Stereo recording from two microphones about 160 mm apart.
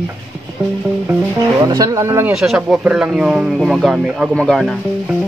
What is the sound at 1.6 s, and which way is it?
Speech, 20° right (ahead or behind).